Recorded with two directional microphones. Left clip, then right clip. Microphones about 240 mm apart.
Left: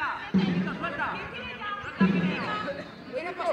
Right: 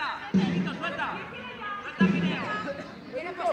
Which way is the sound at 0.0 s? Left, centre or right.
Right.